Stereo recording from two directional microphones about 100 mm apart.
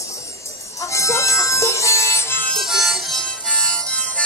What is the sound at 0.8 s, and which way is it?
Music, 30° left (ahead or behind).